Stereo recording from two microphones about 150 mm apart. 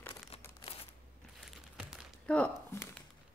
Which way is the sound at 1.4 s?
Centre (ahead or behind).